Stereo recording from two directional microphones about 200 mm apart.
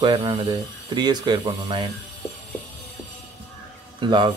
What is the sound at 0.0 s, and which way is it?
Speech, 25° right (ahead or behind).